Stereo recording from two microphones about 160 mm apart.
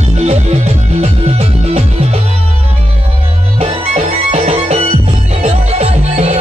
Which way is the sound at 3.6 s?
40° right (ahead or behind).